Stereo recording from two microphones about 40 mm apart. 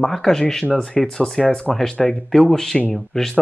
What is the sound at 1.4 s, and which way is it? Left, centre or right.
Speech, left.